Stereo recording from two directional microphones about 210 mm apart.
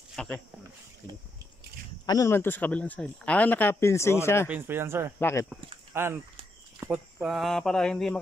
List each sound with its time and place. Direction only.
0.1 s a sound: 5° left (ahead or behind)
2.0 s speech: 15° left (ahead or behind)
4.5 s speech: 10° right (ahead or behind)
5.2 s speech: 15° left (ahead or behind)
5.9 s speech: 10° right (ahead or behind)